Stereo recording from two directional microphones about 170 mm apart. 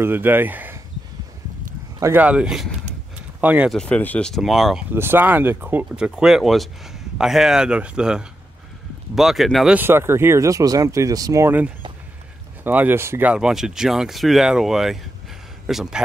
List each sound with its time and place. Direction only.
0.0 s speech: 10° right (ahead or behind)
2.0 s speech: 15° right (ahead or behind)
3.7 s speech: 5° left (ahead or behind)
4.9 s speech: 10° right (ahead or behind)
9.8 s a man's voice: 15° right (ahead or behind)